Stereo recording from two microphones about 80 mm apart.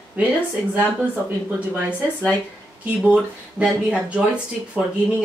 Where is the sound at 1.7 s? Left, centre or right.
Centre.